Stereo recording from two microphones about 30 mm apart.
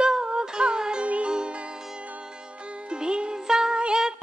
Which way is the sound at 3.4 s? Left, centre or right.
Centre.